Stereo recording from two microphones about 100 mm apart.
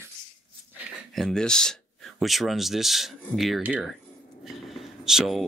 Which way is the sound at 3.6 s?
10° right (ahead or behind).